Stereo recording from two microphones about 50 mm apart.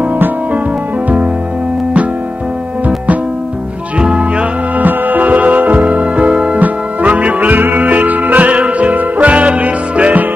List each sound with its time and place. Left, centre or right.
0.0 s music: right
4.0 s music: right
4.7 s music: right